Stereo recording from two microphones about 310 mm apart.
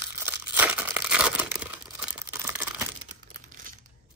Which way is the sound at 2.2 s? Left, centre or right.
Centre.